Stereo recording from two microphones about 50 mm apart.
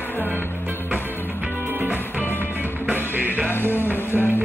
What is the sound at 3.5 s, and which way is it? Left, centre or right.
Music, left.